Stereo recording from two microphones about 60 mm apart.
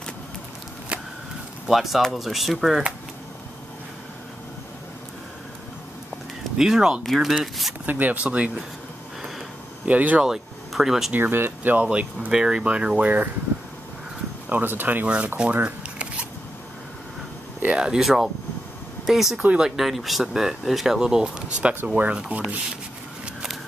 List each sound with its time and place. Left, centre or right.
1.7 s speech: centre
6.6 s speech: centre
7.8 s speech: right
9.8 s speech: right
10.2 s speech: centre
11.1 s speech: right
12.3 s speech: centre
14.5 s speech: right
15.3 s shuffling cards: centre
17.7 s speech: centre
19.3 s speech: right
19.6 s speech: centre; by 22.4 s right